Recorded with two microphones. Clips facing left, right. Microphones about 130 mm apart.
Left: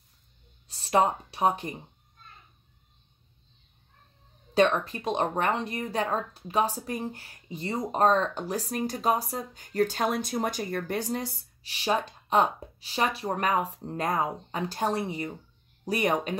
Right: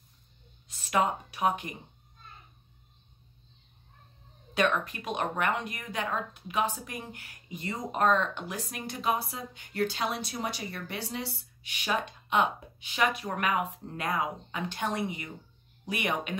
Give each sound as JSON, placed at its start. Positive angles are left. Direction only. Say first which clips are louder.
{"t": 0.7, "sound": "speech", "louder": "left 4 dB", "side_deg": 30}
{"t": 4.6, "sound": "speech", "louder": "left 5 dB", "side_deg": 30}